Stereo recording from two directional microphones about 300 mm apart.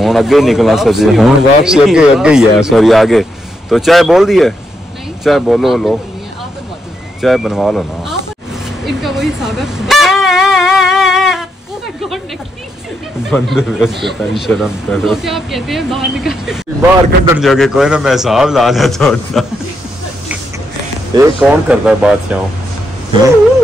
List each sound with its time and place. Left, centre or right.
0.0 s speech: centre
7.2 s speech: centre
8.8 s a sound: centre
13.3 s speech: centre
21.4 s speech: centre